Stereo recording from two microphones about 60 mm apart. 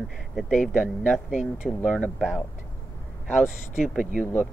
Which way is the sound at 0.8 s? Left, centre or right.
Left.